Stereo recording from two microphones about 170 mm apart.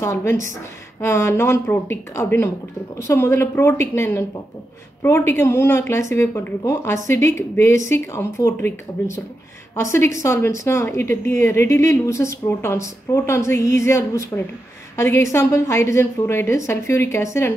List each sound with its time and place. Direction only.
0.0 s a woman's voice: 15° left (ahead or behind)